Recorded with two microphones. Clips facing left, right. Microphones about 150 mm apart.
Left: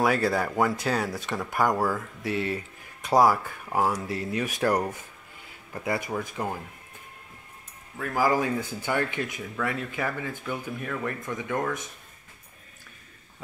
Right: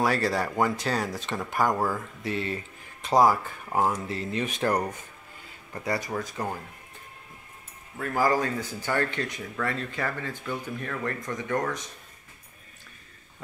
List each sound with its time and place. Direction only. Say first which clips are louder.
0.0 s speech: left 1 dB; 5° left (ahead or behind)
2.2 s speech: left 2 dB; 15° left (ahead or behind)
4.1 s speech: left 1 dB; 15° left (ahead or behind)
4.5 s speech: left 2 dB; 20° right (ahead or behind)
5.7 s speech: left 1 dB; 5° left (ahead or behind)
8.0 s speech: even; 5° left (ahead or behind)